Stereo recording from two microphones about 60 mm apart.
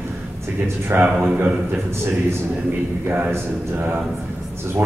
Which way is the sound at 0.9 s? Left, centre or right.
Right.